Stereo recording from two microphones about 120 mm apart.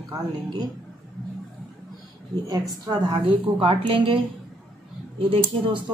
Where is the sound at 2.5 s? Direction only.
35° right (ahead or behind).